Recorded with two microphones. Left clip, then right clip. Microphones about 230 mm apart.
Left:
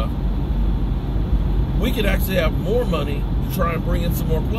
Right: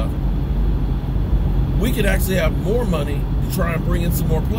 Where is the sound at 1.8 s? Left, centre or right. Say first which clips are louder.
Right 1 dB; centre.